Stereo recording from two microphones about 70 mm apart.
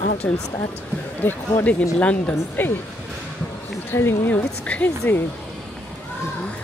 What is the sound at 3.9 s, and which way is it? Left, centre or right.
Speech, left.